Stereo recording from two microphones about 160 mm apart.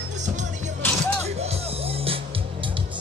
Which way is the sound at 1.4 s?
40° right (ahead or behind).